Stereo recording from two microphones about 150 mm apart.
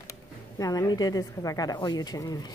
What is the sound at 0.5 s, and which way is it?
Speech, 25° left (ahead or behind).